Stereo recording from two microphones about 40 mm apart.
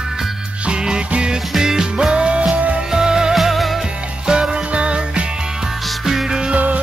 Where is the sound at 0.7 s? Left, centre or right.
Right.